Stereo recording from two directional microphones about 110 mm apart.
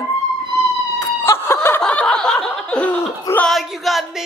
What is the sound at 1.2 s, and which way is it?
Snicker, 25° left (ahead or behind).